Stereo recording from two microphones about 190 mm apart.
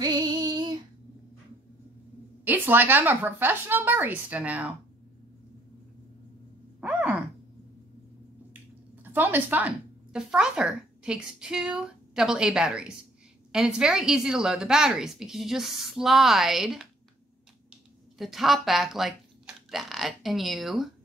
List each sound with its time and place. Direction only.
0.0 s female singing: 20° right (ahead or behind)
2.4 s speech: 10° right (ahead or behind)
6.8 s sigh: 5° right (ahead or behind)
9.1 s speech: 10° right (ahead or behind)
18.1 s speech: centre (ahead or behind)